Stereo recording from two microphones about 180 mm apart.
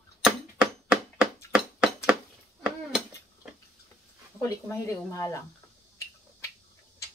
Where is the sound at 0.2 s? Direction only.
5° right (ahead or behind).